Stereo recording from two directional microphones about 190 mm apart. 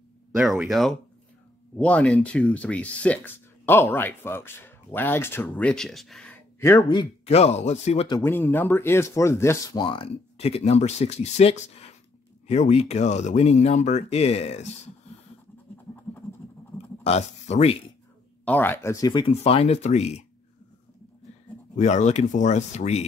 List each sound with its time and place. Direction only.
0.4 s speech: centre (ahead or behind)
6.9 s speech: 30° left (ahead or behind)
8.2 s speech: 10° left (ahead or behind); by 14.7 s 35° left (ahead or behind)
16.1 s a sound: 10° left (ahead or behind)
16.7 s speech: 35° left (ahead or behind)
18.4 s speech: 10° left (ahead or behind); by 20.2 s 35° left (ahead or behind)
21.7 s speech: 40° left (ahead or behind)